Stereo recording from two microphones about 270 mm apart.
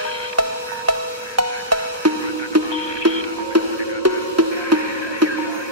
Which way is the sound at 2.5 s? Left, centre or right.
Right.